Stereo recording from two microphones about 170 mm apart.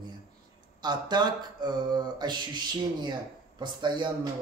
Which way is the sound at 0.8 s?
25° right (ahead or behind).